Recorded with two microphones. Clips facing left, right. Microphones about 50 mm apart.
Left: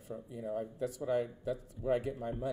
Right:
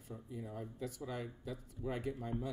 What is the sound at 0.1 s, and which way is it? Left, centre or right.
Speech, centre.